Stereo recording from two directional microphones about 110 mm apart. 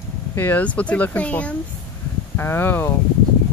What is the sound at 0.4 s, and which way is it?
Speech, 15° left (ahead or behind).